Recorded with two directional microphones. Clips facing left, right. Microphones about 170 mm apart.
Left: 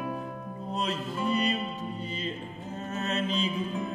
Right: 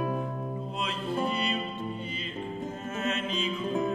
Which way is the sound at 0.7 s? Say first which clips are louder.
Left 1 dB; 40° left (ahead or behind).